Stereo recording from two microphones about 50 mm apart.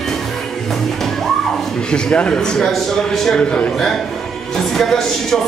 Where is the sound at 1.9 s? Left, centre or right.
Centre.